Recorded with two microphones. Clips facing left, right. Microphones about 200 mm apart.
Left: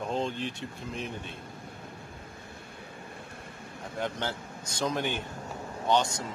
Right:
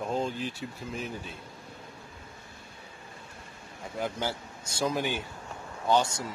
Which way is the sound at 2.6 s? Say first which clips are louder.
Left 4 dB; 60° left (ahead or behind).